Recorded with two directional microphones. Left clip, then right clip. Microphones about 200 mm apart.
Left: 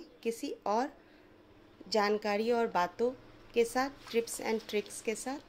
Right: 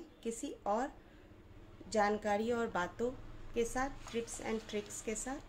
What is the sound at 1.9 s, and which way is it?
A woman's voice, 25° left (ahead or behind).